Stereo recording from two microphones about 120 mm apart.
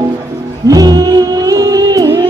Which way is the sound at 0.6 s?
30° right (ahead or behind).